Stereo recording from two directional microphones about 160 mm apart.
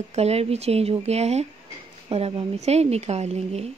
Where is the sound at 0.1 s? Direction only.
40° right (ahead or behind).